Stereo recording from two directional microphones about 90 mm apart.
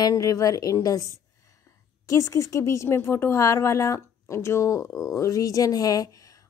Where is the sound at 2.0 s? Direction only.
35° left (ahead or behind).